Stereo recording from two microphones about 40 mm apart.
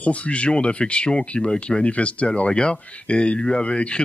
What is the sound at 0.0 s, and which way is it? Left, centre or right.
Speech, left.